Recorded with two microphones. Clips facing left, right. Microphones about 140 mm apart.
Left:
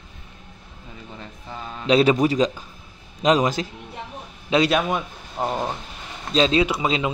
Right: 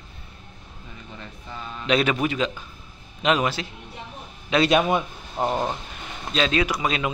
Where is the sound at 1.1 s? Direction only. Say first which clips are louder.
Left 1 dB; 25° left (ahead or behind).